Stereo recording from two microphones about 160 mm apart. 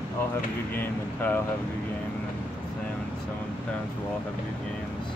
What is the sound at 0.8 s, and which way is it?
Speech, 10° left (ahead or behind).